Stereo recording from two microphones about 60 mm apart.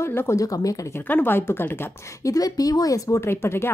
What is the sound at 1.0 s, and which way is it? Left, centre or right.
Speech, left.